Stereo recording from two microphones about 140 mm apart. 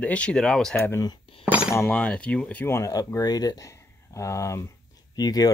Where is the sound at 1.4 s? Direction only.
10° right (ahead or behind).